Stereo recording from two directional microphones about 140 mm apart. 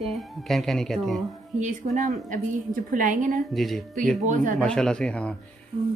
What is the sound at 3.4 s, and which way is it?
Speech, centre (ahead or behind).